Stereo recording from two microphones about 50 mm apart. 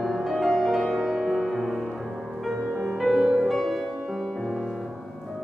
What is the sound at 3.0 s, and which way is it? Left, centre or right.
Music, centre.